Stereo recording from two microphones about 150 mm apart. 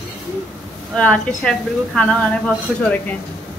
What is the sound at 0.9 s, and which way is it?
A woman's voice, 5° left (ahead or behind).